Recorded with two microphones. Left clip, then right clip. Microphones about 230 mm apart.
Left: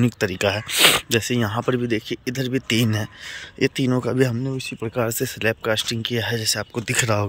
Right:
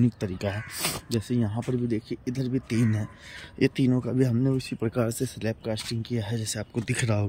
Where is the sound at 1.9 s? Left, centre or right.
Centre.